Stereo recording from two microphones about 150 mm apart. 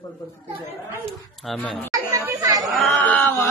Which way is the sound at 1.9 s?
20° right (ahead or behind).